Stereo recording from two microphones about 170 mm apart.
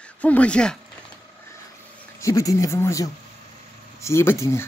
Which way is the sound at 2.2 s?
20° left (ahead or behind).